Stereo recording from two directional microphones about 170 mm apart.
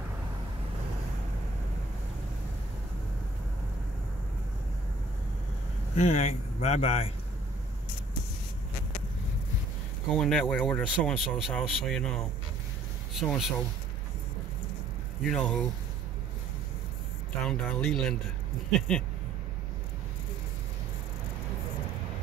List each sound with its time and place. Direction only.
5.9 s speech: 45° left (ahead or behind)
10.0 s speech: 5° left (ahead or behind)
15.2 s speech: 5° left (ahead or behind)
17.5 s speech: 5° left (ahead or behind)